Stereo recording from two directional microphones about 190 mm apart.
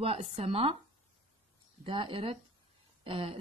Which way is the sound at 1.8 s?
25° right (ahead or behind).